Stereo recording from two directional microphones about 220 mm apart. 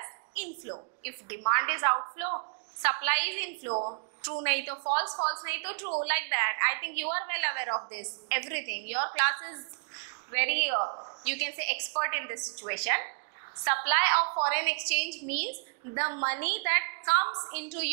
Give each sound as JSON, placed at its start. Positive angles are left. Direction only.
{"t": 0.0, "sound": "a sound", "side_deg": -20}
{"t": 1.4, "sound": "a woman's voice", "side_deg": -15}
{"t": 3.7, "sound": "a woman's voice", "side_deg": -25}
{"t": 4.2, "sound": "a woman's voice", "side_deg": -15}
{"t": 5.4, "sound": "a woman's voice", "side_deg": -10}
{"t": 10.8, "sound": "a sound", "side_deg": -25}
{"t": 11.2, "sound": "a woman's voice", "side_deg": -10}